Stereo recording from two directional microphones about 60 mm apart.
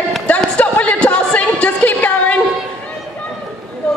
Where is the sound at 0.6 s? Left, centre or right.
Left.